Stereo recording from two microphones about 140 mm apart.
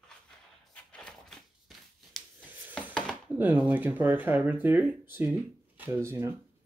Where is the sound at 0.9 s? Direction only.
5° left (ahead or behind).